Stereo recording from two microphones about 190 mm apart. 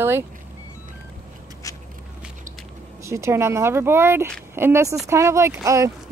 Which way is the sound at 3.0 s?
15° right (ahead or behind).